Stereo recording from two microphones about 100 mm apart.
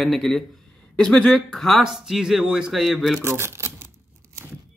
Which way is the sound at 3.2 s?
25° right (ahead or behind).